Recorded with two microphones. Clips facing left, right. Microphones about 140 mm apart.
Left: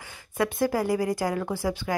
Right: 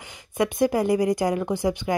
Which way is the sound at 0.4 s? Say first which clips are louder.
Right 3 dB; 20° right (ahead or behind).